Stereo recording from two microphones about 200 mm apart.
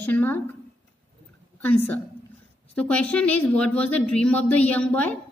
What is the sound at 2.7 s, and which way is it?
Speech, 5° left (ahead or behind).